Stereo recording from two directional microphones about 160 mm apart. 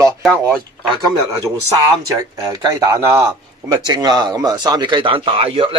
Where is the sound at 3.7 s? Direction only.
20° right (ahead or behind).